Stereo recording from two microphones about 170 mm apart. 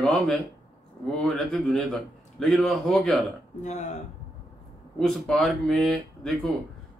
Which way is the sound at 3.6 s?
45° left (ahead or behind).